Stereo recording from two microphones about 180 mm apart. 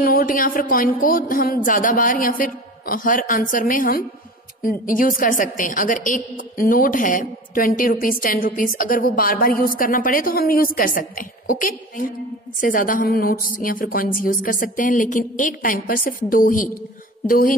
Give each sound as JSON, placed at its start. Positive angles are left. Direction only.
{"t": 0.0, "sound": "a woman's voice", "side_deg": 50}